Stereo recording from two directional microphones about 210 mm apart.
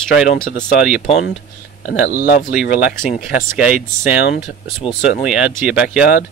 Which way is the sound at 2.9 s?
40° left (ahead or behind).